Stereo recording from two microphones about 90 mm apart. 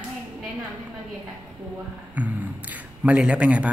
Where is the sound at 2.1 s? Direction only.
15° right (ahead or behind).